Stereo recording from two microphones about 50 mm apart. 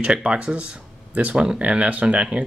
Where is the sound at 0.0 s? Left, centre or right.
Right.